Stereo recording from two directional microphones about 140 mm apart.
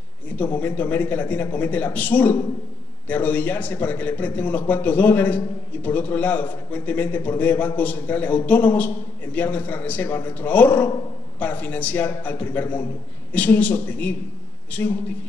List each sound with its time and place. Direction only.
0.4 s a man's voice: 15° left (ahead or behind)